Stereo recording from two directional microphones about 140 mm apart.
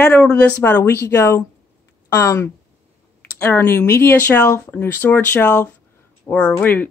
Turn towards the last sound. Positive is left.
turn(degrees=10)  # may be behind; listen again after turning